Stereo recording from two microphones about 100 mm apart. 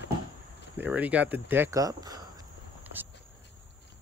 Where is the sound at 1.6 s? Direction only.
35° right (ahead or behind).